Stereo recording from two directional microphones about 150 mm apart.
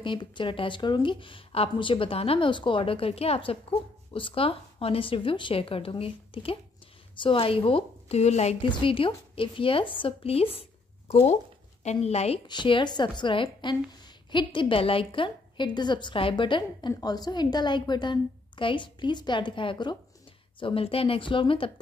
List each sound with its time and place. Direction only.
0.0 s speech: 30° left (ahead or behind)
8.6 s speech: 35° left (ahead or behind)
11.8 s a woman's voice: 45° left (ahead or behind)
12.4 s speech: 30° left (ahead or behind)